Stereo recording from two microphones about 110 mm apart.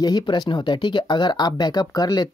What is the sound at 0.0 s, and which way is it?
Speech, 40° left (ahead or behind).